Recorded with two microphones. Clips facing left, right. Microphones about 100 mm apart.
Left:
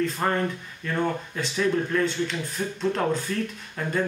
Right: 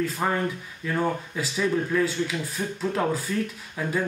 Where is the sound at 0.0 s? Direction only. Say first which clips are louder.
Left 1 dB; 5° right (ahead or behind).